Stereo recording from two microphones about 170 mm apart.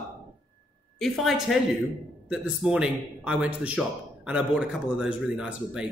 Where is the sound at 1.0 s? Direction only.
Centre (ahead or behind).